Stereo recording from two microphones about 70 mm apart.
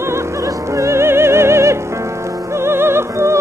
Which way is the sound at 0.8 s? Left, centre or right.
Right.